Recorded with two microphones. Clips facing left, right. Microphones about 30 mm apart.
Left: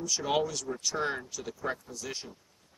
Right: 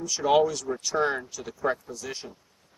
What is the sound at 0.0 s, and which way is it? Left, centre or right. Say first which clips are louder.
Speech: right 7 dB; centre.